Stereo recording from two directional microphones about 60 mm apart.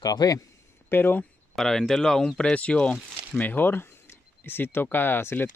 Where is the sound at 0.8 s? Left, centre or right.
Left.